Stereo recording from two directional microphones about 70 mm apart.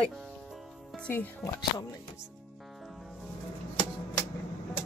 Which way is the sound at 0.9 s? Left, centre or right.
Left.